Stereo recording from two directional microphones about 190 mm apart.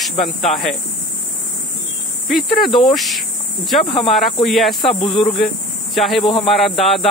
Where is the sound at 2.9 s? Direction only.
Centre (ahead or behind).